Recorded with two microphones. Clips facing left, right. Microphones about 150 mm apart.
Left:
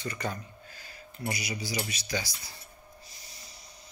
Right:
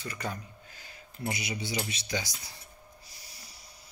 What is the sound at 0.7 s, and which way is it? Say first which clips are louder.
Speech: left 3 dB; 20° right (ahead or behind).